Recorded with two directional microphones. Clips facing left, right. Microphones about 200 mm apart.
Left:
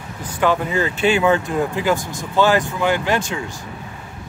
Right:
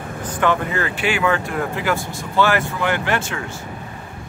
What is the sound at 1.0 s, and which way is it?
Speech, 20° left (ahead or behind).